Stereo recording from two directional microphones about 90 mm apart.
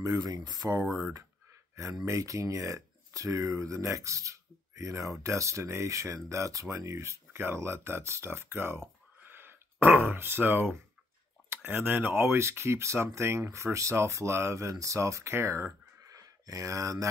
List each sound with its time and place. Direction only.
0.0 s speech: 40° right (ahead or behind)